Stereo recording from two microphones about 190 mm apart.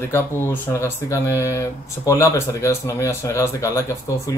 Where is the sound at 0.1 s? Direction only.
10° left (ahead or behind).